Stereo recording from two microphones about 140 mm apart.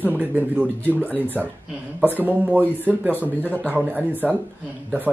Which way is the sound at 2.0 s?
10° right (ahead or behind).